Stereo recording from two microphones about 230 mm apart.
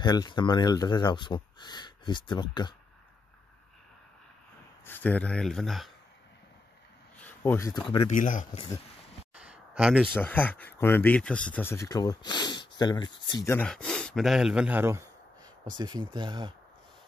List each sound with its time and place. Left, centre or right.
0.0 s speech: centre
4.8 s speech: centre
7.2 s speech: centre
8.1 s speech: left
9.4 s a sound: centre
10.1 s speech: centre